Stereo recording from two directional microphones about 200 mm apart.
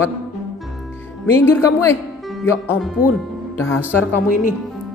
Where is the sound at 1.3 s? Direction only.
10° left (ahead or behind).